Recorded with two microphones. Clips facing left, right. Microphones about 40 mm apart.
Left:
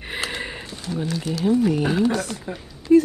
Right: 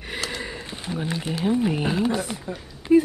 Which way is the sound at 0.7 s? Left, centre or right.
Right.